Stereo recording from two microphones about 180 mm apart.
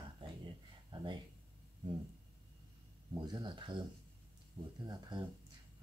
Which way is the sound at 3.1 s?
20° right (ahead or behind).